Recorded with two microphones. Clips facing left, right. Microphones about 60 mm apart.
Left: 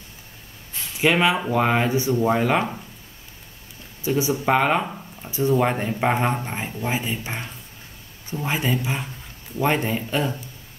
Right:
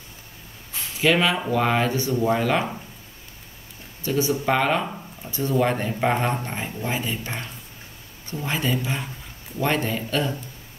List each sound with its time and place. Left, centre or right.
1.0 s speech: centre
4.0 s speech: centre